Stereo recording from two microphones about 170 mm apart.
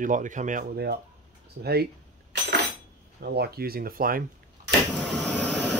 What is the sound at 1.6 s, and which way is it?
Speech, 70° right (ahead or behind).